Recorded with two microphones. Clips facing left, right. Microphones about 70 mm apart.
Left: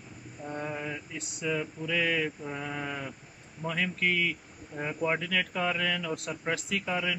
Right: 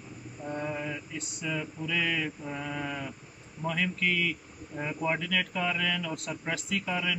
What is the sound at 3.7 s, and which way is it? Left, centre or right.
Speech, left.